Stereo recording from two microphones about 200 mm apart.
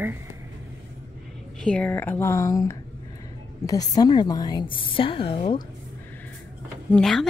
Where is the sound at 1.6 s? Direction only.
5° left (ahead or behind); by 5.6 s 30° left (ahead or behind).